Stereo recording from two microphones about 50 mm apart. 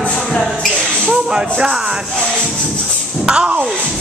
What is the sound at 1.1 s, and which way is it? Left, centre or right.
Music, centre.